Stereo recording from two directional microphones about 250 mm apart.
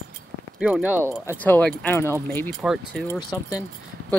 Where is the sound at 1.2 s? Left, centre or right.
Centre.